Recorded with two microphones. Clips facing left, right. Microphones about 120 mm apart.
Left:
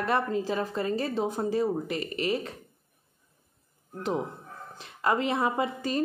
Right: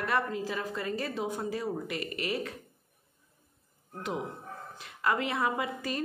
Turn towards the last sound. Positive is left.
turn(degrees=30)  # may be behind; listen again after turning